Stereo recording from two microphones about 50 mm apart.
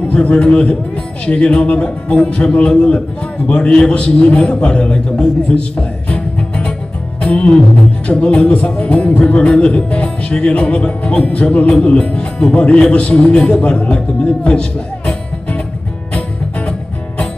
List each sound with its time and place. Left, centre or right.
0.1 s a man's voice: left
7.2 s music: left
8.4 s speech: left